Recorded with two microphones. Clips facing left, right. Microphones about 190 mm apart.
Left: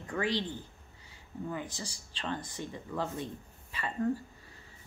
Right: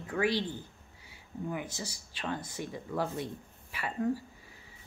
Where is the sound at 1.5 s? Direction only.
10° right (ahead or behind).